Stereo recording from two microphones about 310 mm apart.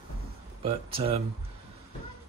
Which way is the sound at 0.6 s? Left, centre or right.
Centre.